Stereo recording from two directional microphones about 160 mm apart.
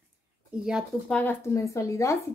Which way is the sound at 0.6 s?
5° right (ahead or behind).